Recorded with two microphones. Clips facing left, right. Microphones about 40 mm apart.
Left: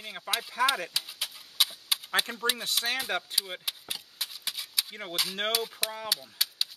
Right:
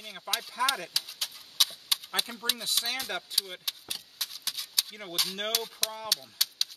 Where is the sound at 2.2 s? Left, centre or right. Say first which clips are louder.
Left 3 dB; left.